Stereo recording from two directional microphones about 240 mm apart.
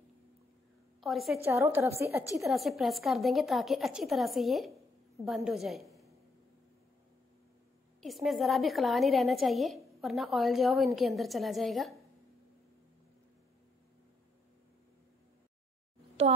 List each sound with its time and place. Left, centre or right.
1.0 s a woman's voice: centre
2.4 s a woman's voice: centre
8.0 s a woman's voice: centre
16.2 s a child's voice: right